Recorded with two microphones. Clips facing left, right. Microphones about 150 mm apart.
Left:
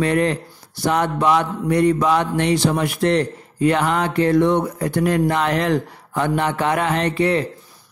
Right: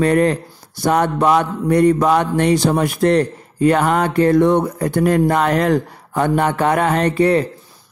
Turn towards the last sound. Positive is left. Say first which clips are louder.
# right 4 dB
turn(degrees=-40)  # may be behind; listen again after turning